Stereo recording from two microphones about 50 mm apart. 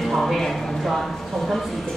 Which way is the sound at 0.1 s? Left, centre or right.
Centre.